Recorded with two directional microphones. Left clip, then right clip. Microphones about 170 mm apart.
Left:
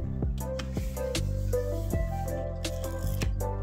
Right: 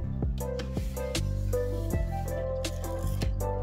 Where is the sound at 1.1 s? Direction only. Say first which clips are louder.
Left 1 dB; centre (ahead or behind).